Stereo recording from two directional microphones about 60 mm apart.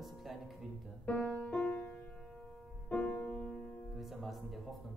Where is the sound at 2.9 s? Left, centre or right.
Left.